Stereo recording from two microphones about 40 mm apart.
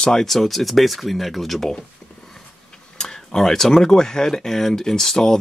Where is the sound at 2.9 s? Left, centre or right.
Centre.